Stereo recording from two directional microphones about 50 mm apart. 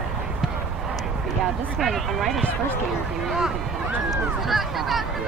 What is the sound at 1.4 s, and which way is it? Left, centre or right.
Speech, centre.